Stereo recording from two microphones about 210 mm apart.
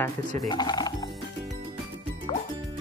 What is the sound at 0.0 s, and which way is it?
Speech, 20° left (ahead or behind).